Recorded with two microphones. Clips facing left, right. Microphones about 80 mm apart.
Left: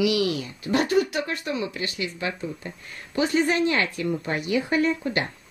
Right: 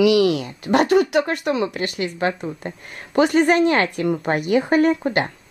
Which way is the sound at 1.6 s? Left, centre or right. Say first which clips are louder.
Right 6 dB; right.